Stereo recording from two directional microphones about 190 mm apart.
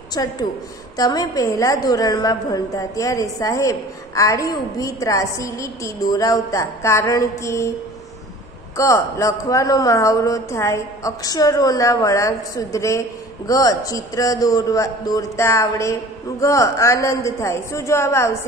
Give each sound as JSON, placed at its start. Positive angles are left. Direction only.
{"t": 0.1, "sound": "a woman's voice", "side_deg": 20}
{"t": 8.7, "sound": "a woman's voice", "side_deg": 15}